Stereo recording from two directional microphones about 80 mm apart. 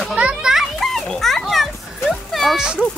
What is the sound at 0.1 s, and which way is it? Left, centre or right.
Children playing, centre.